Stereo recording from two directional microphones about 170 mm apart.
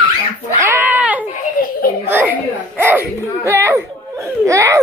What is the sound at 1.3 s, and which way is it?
Baby laughter, 55° left (ahead or behind).